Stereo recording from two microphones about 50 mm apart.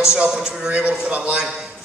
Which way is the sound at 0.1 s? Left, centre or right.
Centre.